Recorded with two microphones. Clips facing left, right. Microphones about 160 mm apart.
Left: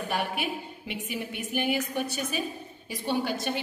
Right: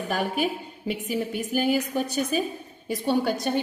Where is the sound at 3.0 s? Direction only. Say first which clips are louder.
Right 4 dB; 50° right (ahead or behind).